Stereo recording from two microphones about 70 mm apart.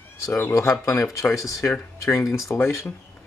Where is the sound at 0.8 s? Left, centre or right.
Left.